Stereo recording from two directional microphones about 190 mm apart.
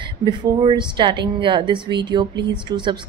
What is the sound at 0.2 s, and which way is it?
A woman's voice, 25° right (ahead or behind).